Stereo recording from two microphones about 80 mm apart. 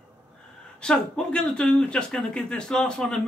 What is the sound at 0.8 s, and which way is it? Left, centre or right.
Speech, centre.